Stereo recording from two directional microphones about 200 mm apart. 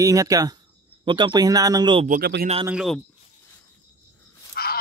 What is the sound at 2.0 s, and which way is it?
Speech, 50° right (ahead or behind).